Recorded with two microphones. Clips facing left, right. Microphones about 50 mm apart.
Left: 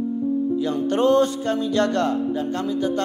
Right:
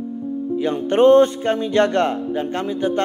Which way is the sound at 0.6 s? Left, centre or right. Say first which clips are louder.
Right 8 dB; right.